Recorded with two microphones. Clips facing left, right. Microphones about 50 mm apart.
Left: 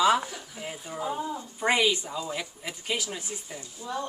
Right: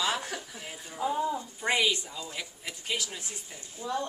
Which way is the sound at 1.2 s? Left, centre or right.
Centre.